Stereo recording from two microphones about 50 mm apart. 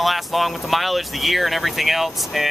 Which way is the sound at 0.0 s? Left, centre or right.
Centre.